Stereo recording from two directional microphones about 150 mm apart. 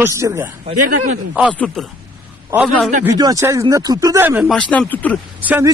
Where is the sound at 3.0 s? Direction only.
20° right (ahead or behind).